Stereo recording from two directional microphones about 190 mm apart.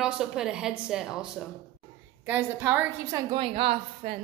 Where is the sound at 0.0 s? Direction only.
5° right (ahead or behind).